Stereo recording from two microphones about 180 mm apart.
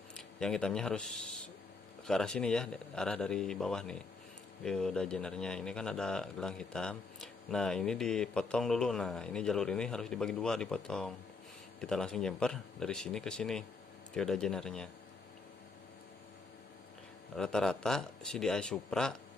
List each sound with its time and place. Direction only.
0.1 s speech: 5° left (ahead or behind)
17.4 s speech: 5° left (ahead or behind)